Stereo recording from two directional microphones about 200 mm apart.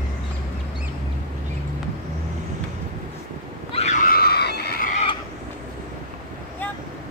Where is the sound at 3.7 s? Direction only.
35° left (ahead or behind); by 4.9 s 50° left (ahead or behind).